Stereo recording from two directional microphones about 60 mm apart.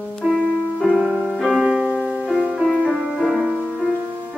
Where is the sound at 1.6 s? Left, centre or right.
Centre.